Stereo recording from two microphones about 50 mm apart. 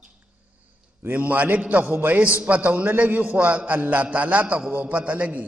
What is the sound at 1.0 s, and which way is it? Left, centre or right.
A man's voice, right.